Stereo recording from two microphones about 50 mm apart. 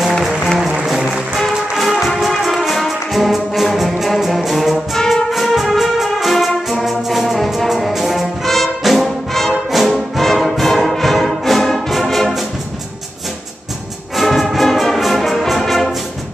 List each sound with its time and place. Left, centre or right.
0.8 s music: centre
4.9 s music: centre
5.3 s music: centre
14.1 s music: centre